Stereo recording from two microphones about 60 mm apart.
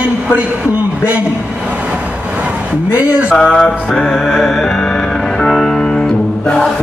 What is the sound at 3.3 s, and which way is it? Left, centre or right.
Music, centre.